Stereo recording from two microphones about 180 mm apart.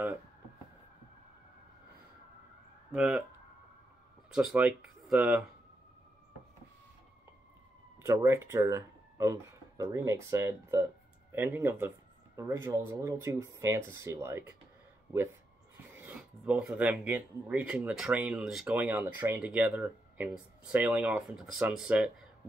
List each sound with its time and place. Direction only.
2.9 s speech: 5° right (ahead or behind)
4.3 s speech: 5° right (ahead or behind)
8.0 s speech: 15° right (ahead or behind)
15.9 s speech: 10° right (ahead or behind)